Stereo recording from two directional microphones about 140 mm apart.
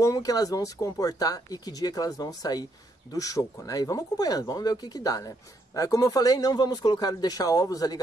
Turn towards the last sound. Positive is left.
turn(degrees=25)  # may be behind; listen again after turning